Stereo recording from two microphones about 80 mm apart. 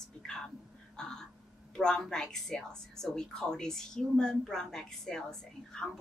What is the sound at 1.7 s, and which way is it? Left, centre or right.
A woman's voice, centre.